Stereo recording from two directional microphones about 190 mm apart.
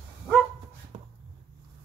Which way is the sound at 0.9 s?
30° right (ahead or behind).